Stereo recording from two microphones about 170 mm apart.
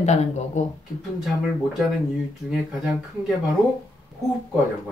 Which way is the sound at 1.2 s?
Centre (ahead or behind).